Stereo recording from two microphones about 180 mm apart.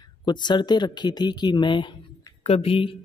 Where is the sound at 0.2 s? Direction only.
25° left (ahead or behind).